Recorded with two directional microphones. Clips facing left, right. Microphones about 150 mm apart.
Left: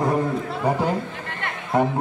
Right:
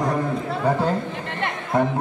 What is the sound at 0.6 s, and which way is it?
Chatter, 10° left (ahead or behind).